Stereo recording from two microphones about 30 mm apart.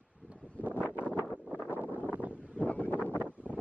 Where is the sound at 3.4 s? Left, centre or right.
Left.